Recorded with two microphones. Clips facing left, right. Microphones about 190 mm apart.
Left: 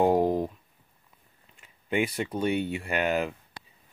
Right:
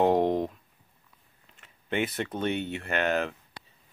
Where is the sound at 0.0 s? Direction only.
5° left (ahead or behind).